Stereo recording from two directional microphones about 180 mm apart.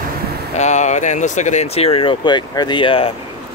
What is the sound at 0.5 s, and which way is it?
Speech, 40° left (ahead or behind).